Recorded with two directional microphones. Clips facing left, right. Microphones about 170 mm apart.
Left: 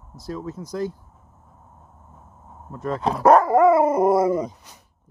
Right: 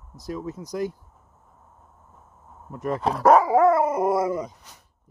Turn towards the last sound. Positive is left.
turn(degrees=35)  # may be behind; listen again after turning